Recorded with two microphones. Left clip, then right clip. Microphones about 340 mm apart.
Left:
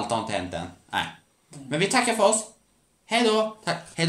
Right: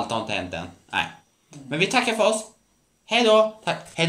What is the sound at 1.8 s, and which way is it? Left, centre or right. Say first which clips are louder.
Speech: right 1 dB; centre.